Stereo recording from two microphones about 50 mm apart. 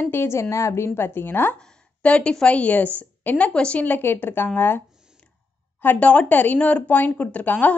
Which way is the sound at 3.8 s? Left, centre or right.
Left.